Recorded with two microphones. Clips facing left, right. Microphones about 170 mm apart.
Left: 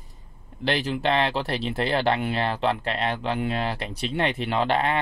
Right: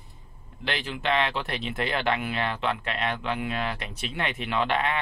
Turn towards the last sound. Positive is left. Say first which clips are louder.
# left 3 dB
turn(degrees=35)  # may be behind; listen again after turning